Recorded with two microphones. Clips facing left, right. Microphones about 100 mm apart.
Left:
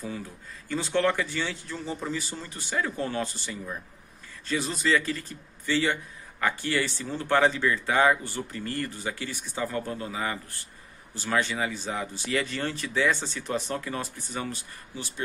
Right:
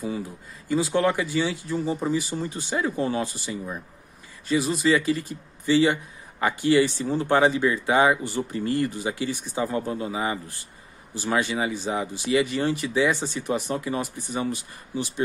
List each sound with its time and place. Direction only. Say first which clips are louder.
0.0 s speech: right 6 dB; 10° right (ahead or behind)